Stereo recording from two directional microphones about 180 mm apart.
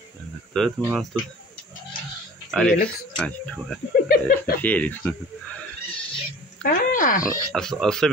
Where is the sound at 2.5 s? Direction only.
Centre (ahead or behind).